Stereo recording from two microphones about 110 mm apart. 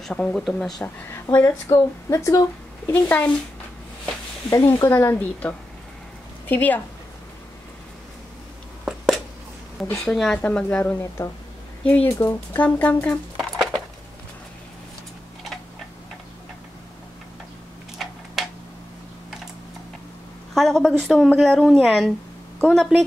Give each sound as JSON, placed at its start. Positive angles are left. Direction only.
{"t": 0.0, "sound": "speech", "side_deg": 5}
{"t": 0.8, "sound": "a woman's voice", "side_deg": 25}
{"t": 2.9, "sound": "speech", "side_deg": 15}
{"t": 4.5, "sound": "a woman's voice", "side_deg": 30}
{"t": 8.8, "sound": "a sound", "side_deg": 0}
{"t": 10.1, "sound": "speech", "side_deg": 5}
{"t": 11.2, "sound": "a woman's voice", "side_deg": 25}
{"t": 11.8, "sound": "speech", "side_deg": 15}
{"t": 13.4, "sound": "a sound", "side_deg": 0}
{"t": 18.0, "sound": "a sound", "side_deg": 0}
{"t": 20.5, "sound": "speech", "side_deg": 5}